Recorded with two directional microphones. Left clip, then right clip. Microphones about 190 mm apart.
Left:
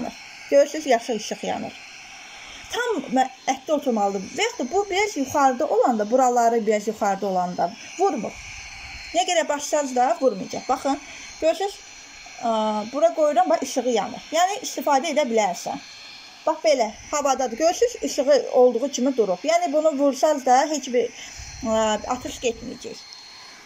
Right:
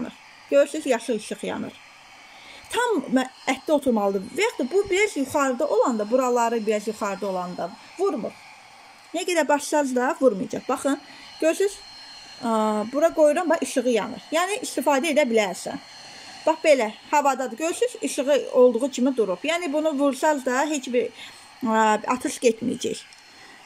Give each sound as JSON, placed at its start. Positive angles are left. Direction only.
{"t": 0.5, "sound": "speech", "side_deg": -15}
{"t": 2.7, "sound": "speech", "side_deg": -20}
{"t": 16.7, "sound": "speech", "side_deg": -20}